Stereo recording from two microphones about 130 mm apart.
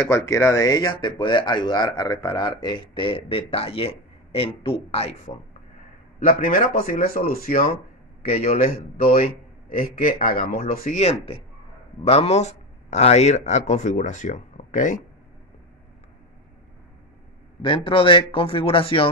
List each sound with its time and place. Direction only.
0.1 s speech: 20° left (ahead or behind); by 5.3 s 55° left (ahead or behind)
6.1 s speech: 90° left
11.1 s a man's voice: 50° left (ahead or behind); by 15.0 s 75° left (ahead or behind)
17.6 s a man's voice: 45° left (ahead or behind)